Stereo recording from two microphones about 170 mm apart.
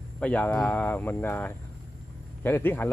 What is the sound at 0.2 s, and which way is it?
Speech, 10° left (ahead or behind).